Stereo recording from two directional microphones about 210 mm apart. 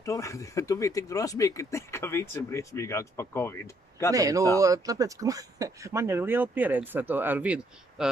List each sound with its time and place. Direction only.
0.0 s speech: 15° left (ahead or behind)
4.1 s speech: 15° right (ahead or behind)